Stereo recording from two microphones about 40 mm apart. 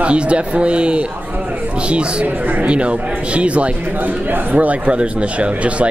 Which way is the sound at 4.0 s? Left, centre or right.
Right.